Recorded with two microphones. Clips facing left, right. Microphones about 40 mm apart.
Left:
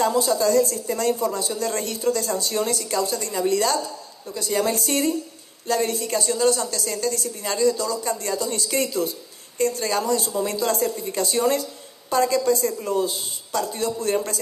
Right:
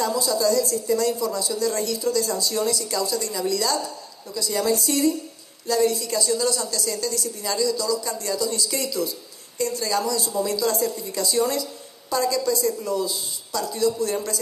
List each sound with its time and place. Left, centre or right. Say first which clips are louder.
0.0 s a woman's voice: left 2 dB; left